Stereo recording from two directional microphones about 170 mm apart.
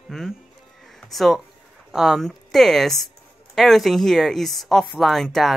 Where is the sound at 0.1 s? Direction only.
Centre (ahead or behind).